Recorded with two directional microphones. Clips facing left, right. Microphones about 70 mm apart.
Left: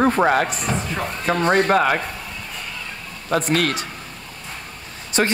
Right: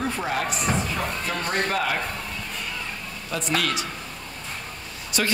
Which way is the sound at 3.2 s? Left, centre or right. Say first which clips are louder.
Left 6 dB; left.